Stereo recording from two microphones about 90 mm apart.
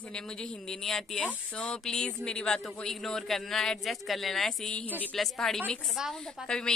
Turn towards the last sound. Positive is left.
turn(degrees=10)  # may be behind; listen again after turning